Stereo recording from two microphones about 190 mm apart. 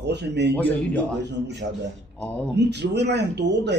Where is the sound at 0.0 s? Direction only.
60° right (ahead or behind).